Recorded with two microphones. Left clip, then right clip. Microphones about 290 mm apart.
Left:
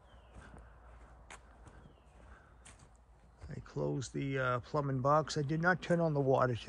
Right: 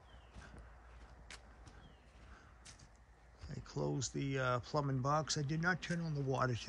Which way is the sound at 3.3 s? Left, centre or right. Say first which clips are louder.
Left 3 dB; centre.